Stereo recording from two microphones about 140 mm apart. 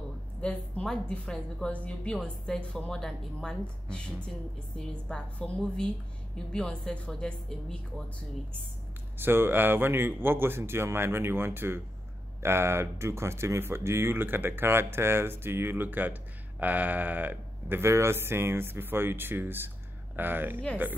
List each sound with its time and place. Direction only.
0.4 s a woman's voice: 10° left (ahead or behind)
9.2 s speech: 15° right (ahead or behind)